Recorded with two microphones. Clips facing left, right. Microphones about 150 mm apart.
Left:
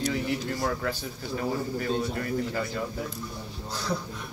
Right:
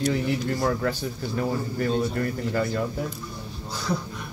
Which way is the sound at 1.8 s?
50° right (ahead or behind).